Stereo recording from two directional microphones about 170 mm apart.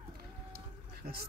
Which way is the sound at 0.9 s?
65° right (ahead or behind).